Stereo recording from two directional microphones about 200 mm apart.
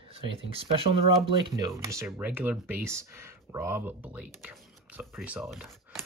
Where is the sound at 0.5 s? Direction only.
30° right (ahead or behind); by 6.0 s centre (ahead or behind).